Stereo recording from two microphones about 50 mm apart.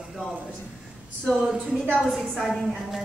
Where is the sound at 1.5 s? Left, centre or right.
Centre.